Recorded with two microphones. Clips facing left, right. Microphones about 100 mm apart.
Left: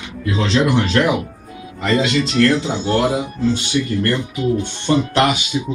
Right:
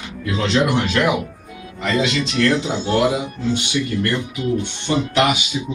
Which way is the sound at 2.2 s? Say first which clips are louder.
Left 3 dB; 30° left (ahead or behind).